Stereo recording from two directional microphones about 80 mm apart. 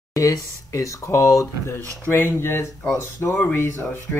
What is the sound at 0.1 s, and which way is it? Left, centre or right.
Speech, left.